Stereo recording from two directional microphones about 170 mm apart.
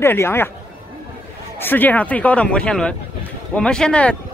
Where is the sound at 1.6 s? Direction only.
10° left (ahead or behind).